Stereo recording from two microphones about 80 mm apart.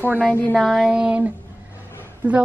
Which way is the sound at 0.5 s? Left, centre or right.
Centre.